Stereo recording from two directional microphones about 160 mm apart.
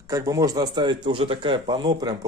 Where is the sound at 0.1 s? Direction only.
20° right (ahead or behind).